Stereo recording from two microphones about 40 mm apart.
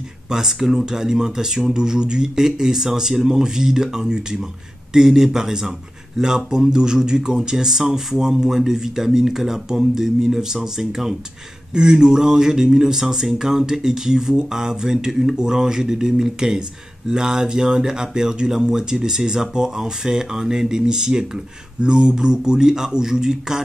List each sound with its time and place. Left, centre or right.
0.3 s speech: centre